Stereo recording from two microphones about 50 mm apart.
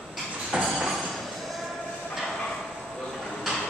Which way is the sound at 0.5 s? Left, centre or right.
Centre.